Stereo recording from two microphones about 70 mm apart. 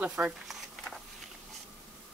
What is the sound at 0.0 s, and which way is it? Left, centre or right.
Speech, centre.